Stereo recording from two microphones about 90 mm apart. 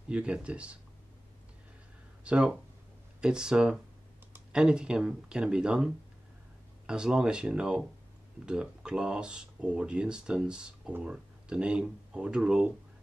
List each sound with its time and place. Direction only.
0.1 s speech: 10° right (ahead or behind)
2.2 s speech: 10° right (ahead or behind)